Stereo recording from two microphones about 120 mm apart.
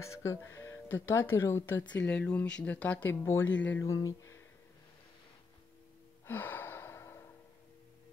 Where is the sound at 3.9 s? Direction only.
30° left (ahead or behind).